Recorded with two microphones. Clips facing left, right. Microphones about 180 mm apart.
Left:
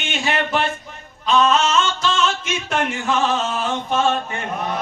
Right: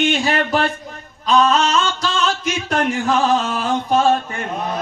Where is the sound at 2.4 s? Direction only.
35° right (ahead or behind).